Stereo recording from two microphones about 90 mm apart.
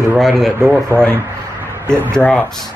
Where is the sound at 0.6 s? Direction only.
25° right (ahead or behind).